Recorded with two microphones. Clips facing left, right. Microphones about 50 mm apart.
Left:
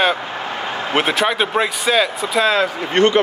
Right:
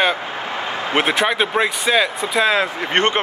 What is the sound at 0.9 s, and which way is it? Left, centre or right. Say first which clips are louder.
Speech: even; centre.